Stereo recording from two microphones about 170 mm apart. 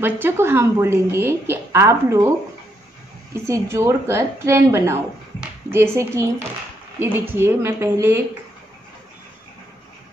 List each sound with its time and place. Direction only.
0.0 s a woman's voice: 15° right (ahead or behind)
3.4 s a woman's voice: 15° right (ahead or behind)